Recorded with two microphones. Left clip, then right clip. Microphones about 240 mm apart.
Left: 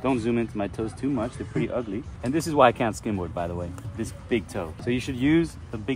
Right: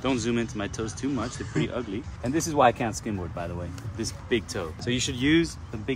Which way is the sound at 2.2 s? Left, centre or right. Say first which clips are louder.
Left 3 dB; centre.